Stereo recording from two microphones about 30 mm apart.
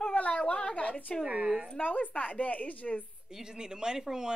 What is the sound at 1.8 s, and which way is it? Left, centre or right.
Speech, left.